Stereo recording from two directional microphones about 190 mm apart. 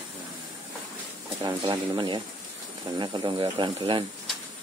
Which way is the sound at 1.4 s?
20° right (ahead or behind).